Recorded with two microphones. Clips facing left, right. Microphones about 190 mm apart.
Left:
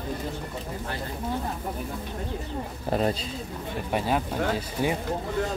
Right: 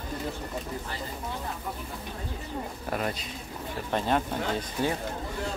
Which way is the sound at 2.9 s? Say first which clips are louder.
Left 6 dB; 30° left (ahead or behind).